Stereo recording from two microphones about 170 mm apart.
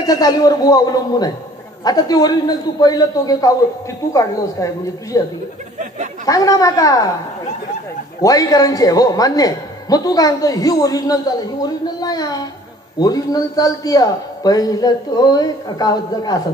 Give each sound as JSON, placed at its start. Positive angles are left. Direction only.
{"t": 0.0, "sound": "a man's voice", "side_deg": 20}
{"t": 6.2, "sound": "a man's voice", "side_deg": 20}
{"t": 8.2, "sound": "a man's voice", "side_deg": 20}